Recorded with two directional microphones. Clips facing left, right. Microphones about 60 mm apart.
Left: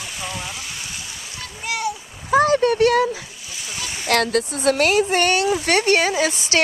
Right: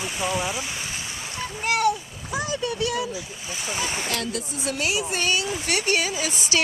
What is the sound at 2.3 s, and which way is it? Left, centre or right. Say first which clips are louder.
Speech: left 12 dB; left.